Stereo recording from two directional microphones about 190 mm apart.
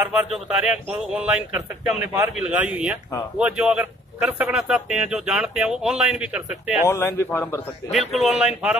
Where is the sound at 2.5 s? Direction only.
5° right (ahead or behind).